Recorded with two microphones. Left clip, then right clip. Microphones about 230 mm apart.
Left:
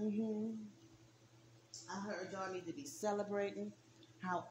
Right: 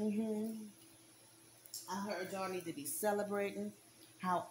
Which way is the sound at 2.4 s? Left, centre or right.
Right.